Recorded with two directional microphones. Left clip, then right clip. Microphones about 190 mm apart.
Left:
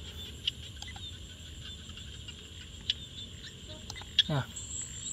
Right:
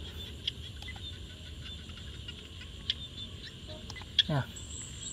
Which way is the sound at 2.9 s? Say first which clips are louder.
Left 1 dB; 45° left (ahead or behind).